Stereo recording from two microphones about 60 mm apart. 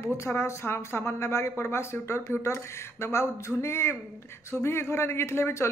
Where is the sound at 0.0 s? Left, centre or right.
Left.